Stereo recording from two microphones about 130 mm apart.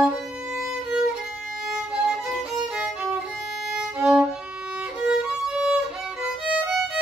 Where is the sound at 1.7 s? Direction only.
5° right (ahead or behind).